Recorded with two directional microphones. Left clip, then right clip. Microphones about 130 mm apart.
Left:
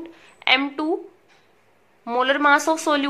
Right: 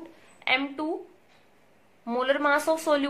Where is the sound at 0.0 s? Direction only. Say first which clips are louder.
Left 8 dB; 20° left (ahead or behind).